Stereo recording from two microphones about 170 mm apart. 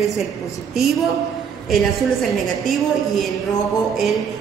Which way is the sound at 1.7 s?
Centre (ahead or behind).